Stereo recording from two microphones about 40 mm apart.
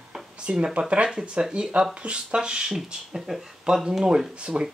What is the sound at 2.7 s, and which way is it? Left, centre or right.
Speech, centre.